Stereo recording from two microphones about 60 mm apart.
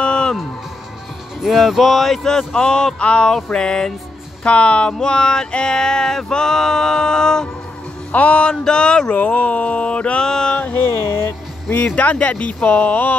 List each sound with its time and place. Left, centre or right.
0.0 s music: centre
1.4 s male singing: centre
8.1 s male singing: left
9.1 s a sound: left
10.6 s music: left
11.7 s speech: left